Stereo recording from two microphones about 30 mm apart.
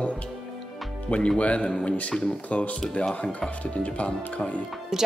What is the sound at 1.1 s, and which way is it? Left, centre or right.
Speech, left.